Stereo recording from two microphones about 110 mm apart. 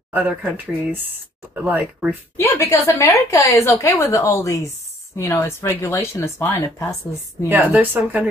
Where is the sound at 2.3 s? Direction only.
25° left (ahead or behind).